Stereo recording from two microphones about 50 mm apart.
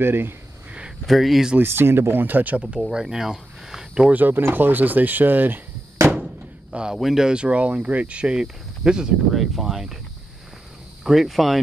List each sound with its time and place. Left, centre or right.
0.0 s speech: right
1.0 s speech: centre
1.6 s speech: right
2.9 s speech: centre
4.1 s speech: right
6.7 s speech: centre
11.1 s speech: centre